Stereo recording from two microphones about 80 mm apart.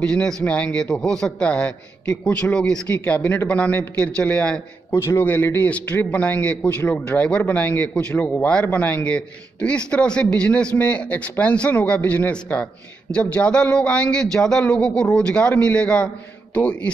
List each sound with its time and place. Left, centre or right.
0.0 s a man's voice: centre
4.9 s a man's voice: left